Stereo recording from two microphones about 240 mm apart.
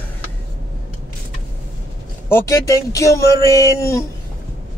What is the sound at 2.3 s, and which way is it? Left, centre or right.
Speech, centre.